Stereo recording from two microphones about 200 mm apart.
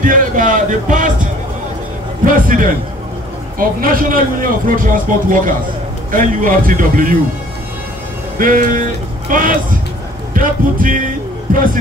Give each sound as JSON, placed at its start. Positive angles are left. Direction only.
{"t": 0.0, "sound": "a sound", "side_deg": -45}
{"t": 2.2, "sound": "speech", "side_deg": -45}
{"t": 8.4, "sound": "speech", "side_deg": -45}